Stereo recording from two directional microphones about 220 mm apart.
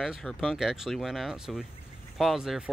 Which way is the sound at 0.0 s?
Centre (ahead or behind).